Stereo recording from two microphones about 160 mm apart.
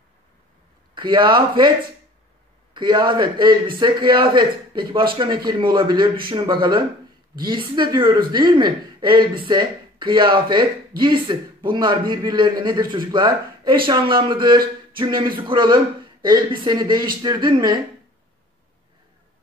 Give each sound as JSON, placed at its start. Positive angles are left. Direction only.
{"t": 0.9, "sound": "speech", "side_deg": -30}
{"t": 2.7, "sound": "a man's voice", "side_deg": -30}